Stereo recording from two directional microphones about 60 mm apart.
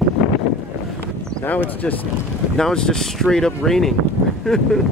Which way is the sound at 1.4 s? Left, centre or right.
Left.